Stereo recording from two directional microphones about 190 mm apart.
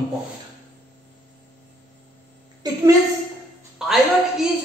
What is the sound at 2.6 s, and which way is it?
Speech, 20° right (ahead or behind).